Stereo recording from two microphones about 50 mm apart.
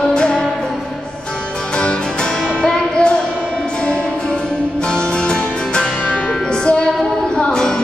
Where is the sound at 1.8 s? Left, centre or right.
Centre.